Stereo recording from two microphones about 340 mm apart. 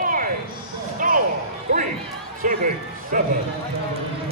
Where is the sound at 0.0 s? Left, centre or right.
Right.